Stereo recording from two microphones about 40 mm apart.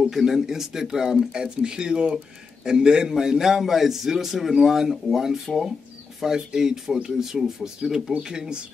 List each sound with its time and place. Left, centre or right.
0.1 s a man's voice: centre; by 8.6 s right